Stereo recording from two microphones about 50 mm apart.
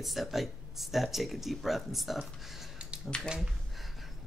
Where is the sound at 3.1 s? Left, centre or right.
Left.